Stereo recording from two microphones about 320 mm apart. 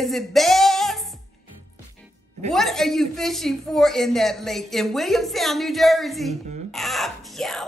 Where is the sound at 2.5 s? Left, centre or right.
Centre.